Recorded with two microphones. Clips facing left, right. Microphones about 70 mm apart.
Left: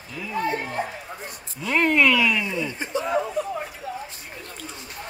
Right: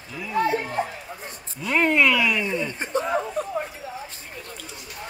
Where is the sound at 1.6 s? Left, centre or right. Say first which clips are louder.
Even; centre.